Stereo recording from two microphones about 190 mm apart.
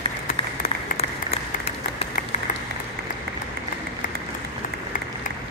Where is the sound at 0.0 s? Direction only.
35° left (ahead or behind).